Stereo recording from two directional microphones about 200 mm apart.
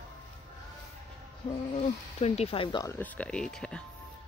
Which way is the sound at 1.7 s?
30° left (ahead or behind).